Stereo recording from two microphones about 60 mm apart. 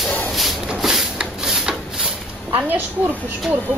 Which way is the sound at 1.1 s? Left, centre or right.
Centre.